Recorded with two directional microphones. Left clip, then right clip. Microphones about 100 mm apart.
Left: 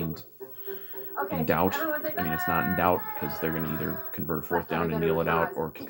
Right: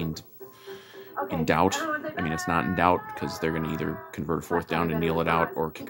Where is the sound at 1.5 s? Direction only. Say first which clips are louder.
Right 3 dB; 35° right (ahead or behind).